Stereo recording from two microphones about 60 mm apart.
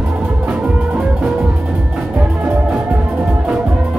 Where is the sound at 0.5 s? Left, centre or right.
Right.